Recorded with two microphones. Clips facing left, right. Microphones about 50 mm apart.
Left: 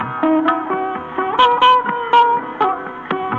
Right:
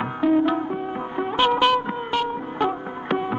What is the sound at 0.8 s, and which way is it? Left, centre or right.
Music, left.